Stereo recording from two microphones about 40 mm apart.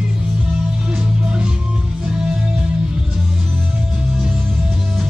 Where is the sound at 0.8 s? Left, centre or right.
Right.